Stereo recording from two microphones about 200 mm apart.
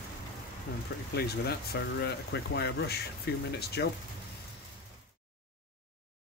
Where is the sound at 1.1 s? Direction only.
55° left (ahead or behind).